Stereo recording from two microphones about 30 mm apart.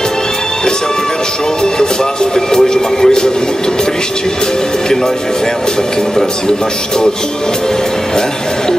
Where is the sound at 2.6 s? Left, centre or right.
Left.